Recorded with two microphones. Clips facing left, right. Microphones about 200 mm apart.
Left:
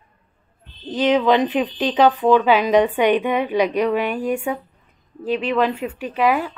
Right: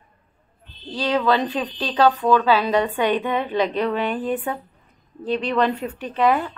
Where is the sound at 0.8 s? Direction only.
20° left (ahead or behind).